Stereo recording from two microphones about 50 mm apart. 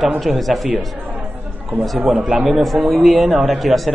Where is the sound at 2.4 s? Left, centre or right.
Centre.